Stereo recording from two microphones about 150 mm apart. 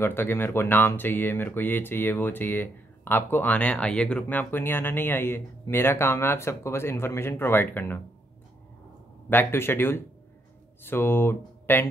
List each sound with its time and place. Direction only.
0.0 s speech: 15° left (ahead or behind)
9.3 s speech: 15° left (ahead or behind)